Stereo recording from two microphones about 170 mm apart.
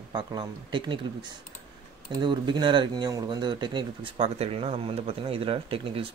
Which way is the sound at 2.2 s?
30° right (ahead or behind).